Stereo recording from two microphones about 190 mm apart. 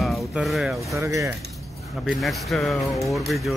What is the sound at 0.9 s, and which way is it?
Speech, 15° right (ahead or behind).